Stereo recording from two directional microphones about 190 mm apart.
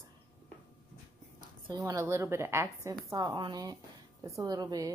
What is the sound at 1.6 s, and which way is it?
Speech, 15° right (ahead or behind).